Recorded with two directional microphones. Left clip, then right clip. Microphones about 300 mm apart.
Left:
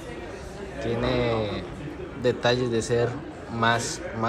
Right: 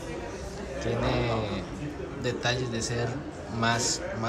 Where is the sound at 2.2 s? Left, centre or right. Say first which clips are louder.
Left 7 dB; centre.